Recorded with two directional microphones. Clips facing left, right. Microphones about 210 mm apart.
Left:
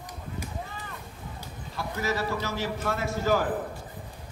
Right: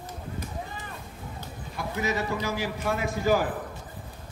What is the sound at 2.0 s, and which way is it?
A man's voice, 20° right (ahead or behind).